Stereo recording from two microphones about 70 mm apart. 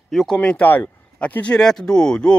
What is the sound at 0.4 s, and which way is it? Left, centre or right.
A man's voice, centre.